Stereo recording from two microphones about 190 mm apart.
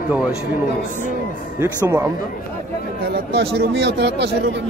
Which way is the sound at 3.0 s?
60° right (ahead or behind).